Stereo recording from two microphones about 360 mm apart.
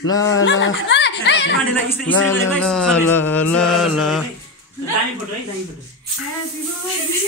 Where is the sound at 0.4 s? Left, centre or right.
Left.